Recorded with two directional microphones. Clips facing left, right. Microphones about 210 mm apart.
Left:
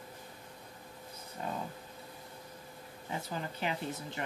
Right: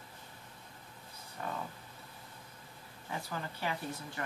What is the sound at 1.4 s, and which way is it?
Speech, 20° left (ahead or behind).